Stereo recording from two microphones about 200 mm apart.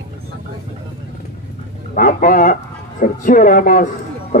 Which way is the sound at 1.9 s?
45° left (ahead or behind).